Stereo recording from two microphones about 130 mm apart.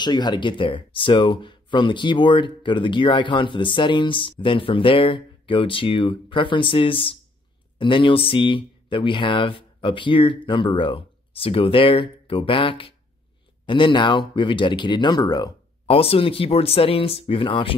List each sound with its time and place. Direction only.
0.0 s speech: 35° left (ahead or behind)
15.9 s speech: 45° left (ahead or behind)